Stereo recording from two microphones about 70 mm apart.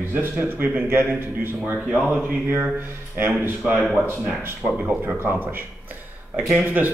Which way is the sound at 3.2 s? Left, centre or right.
Right.